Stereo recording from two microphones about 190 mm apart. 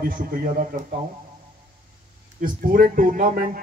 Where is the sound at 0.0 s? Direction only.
45° right (ahead or behind).